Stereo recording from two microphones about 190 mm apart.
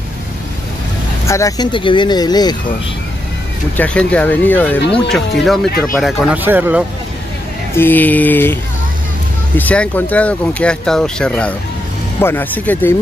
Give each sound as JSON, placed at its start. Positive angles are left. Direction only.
{"t": 1.2, "sound": "speech", "side_deg": 15}
{"t": 3.7, "sound": "speech", "side_deg": 5}
{"t": 7.7, "sound": "speech", "side_deg": 10}
{"t": 9.6, "sound": "speech", "side_deg": 10}